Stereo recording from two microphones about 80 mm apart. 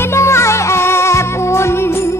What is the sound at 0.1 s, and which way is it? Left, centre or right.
Music, left.